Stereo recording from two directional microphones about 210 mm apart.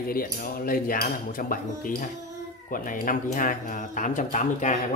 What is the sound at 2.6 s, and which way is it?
Speech, 40° left (ahead or behind).